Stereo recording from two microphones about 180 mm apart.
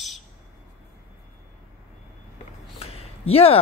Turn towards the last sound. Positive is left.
turn(degrees=35)  # may be behind; listen again after turning